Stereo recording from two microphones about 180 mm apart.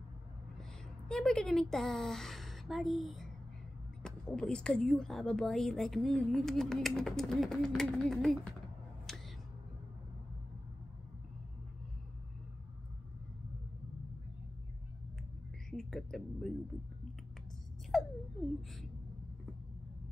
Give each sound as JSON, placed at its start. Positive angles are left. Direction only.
{"t": 0.6, "sound": "a woman's voice", "side_deg": 5}
{"t": 15.7, "sound": "speech", "side_deg": 0}
{"t": 17.9, "sound": "a sound", "side_deg": 0}